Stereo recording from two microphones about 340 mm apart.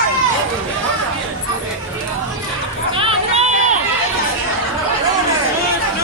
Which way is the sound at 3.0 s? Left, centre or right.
Centre.